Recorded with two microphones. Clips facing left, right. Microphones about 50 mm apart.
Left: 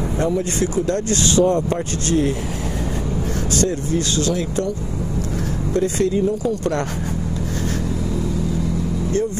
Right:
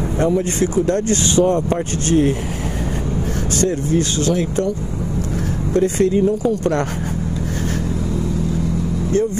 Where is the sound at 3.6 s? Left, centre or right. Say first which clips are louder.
Right 4 dB; right.